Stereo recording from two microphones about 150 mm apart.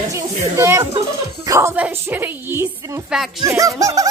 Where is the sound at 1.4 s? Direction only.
20° right (ahead or behind).